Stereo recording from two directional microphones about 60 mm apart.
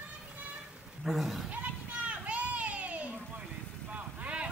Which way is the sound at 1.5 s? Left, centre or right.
Right.